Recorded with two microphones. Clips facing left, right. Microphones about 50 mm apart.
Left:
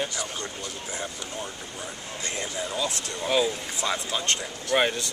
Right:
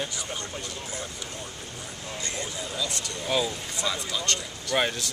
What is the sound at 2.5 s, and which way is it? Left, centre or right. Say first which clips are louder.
Speech: left 7 dB; left.